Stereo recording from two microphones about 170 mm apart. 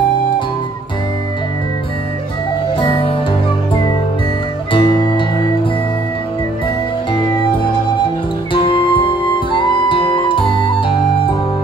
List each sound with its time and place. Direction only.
2.8 s music: 30° left (ahead or behind)
4.7 s music: 30° left (ahead or behind)
8.5 s music: 30° left (ahead or behind)
9.5 s flute: 30° left (ahead or behind)